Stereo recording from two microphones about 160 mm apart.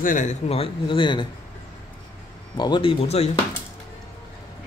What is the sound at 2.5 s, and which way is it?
Speech, 25° left (ahead or behind).